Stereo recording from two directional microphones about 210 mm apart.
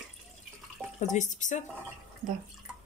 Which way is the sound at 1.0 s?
35° left (ahead or behind).